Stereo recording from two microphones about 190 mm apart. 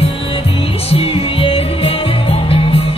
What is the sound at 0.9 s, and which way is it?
Music, 30° left (ahead or behind).